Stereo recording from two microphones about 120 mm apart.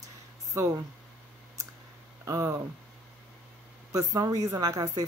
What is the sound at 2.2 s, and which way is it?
Speech, 25° right (ahead or behind).